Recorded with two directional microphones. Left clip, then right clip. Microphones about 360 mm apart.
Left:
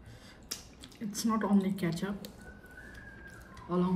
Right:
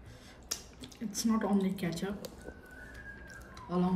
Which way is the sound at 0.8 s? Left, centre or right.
Centre.